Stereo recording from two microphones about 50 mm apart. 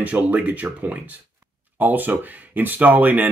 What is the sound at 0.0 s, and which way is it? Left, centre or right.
Speech, right.